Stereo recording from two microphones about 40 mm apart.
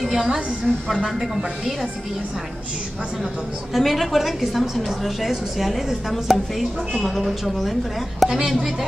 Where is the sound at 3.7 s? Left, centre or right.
Centre.